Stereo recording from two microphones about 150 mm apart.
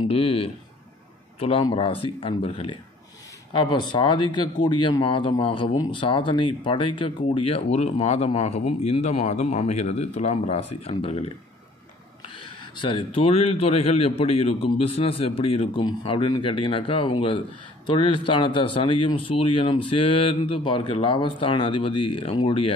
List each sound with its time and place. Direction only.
0.1 s speech: 40° left (ahead or behind)